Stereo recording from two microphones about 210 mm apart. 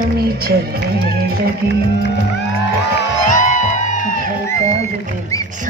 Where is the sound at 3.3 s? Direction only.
35° left (ahead or behind).